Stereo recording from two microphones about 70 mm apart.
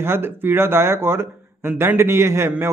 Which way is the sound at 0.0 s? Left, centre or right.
Right.